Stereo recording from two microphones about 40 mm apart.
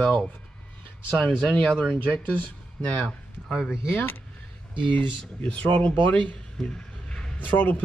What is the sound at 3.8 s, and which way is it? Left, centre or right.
Speech, left.